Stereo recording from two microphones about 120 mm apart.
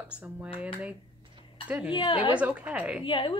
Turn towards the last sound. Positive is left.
turn(degrees=45)  # may be behind; listen again after turning